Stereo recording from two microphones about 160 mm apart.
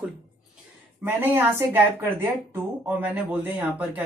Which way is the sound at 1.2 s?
15° right (ahead or behind).